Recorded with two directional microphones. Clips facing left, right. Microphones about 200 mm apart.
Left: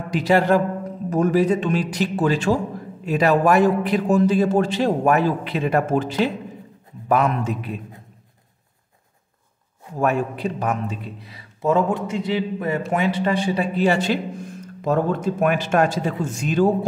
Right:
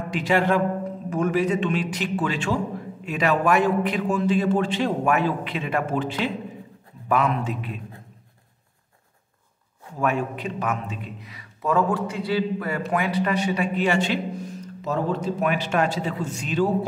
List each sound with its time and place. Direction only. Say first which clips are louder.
0.1 s a man's voice: left 4 dB; 35° left (ahead or behind)
9.9 s a man's voice: left 3 dB; 40° left (ahead or behind)